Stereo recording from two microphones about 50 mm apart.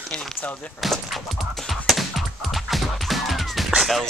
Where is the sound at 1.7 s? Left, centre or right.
Centre.